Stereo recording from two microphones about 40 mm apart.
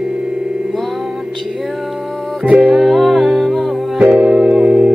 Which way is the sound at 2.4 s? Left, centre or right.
Right.